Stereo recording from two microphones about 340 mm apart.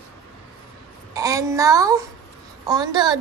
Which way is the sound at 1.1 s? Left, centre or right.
Centre.